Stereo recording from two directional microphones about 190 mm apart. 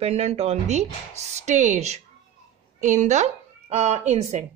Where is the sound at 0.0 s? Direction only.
35° right (ahead or behind).